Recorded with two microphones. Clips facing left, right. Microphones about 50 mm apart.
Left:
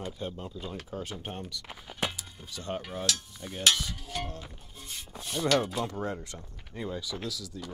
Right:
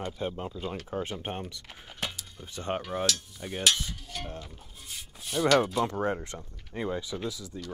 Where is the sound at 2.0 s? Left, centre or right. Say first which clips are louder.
Left 3 dB; centre.